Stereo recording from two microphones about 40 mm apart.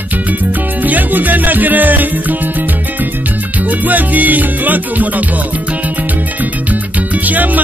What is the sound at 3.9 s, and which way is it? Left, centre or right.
Music, right.